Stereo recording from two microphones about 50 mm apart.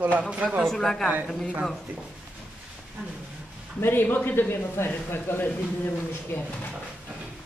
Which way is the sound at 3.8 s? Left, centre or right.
Left.